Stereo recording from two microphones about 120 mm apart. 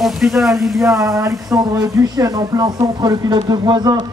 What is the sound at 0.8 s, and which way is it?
Speech, 25° right (ahead or behind).